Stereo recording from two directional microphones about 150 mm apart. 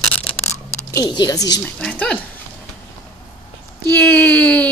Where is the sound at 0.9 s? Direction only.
25° left (ahead or behind).